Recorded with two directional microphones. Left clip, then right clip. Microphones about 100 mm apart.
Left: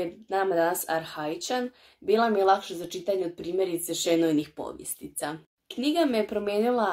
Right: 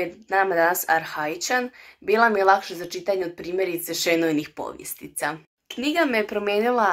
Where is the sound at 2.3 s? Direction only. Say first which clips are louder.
Right 4 dB; 50° right (ahead or behind).